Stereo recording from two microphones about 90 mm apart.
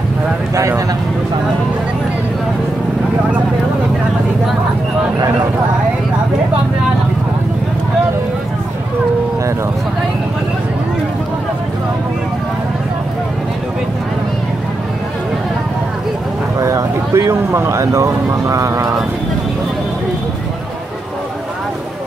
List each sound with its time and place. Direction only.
0.6 s speech: 35° right (ahead or behind)
16.5 s speech: 35° right (ahead or behind)